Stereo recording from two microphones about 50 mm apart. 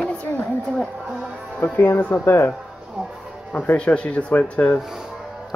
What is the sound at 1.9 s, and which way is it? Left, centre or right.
Speech, left.